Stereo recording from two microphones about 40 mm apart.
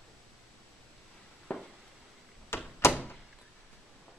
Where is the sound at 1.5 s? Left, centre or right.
Left.